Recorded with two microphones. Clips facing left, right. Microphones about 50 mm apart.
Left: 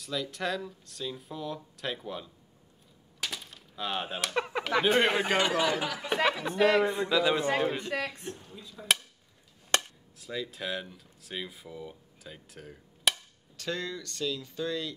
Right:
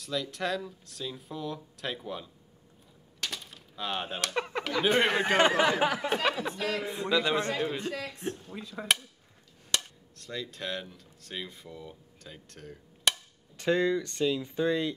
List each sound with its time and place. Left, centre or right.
0.0 s speech: centre
3.2 s a sound: centre
4.8 s speech: centre
5.4 s speech: right
6.5 s a man's voice: left
6.9 s a man's voice: centre
7.5 s a man's voice: left
7.9 s a man's voice: left
8.5 s speech: right
9.8 s speech: centre
13.6 s speech: right